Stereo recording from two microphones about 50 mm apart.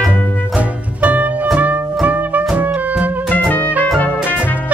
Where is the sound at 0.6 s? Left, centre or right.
Right.